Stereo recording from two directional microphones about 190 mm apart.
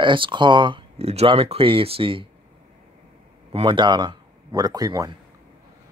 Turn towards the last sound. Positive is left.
turn(degrees=-20)  # may be behind; listen again after turning